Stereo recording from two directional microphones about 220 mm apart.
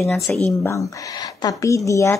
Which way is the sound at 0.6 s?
15° left (ahead or behind).